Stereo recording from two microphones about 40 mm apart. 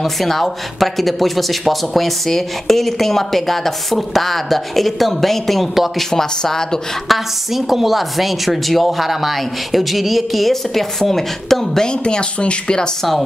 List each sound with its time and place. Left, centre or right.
0.0 s speech: centre
7.1 s speech: centre
11.8 s speech: left